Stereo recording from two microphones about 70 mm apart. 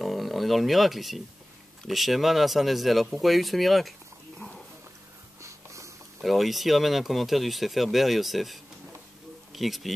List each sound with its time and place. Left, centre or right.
0.0 s speech: centre
5.4 s snort: right
6.2 s speech: centre